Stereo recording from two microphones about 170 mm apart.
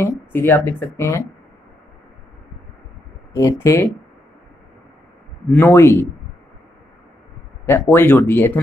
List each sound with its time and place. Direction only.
0.0 s speech: 10° left (ahead or behind)
3.3 s speech: 15° left (ahead or behind)
5.5 s speech: 10° left (ahead or behind)
7.6 s speech: 10° left (ahead or behind)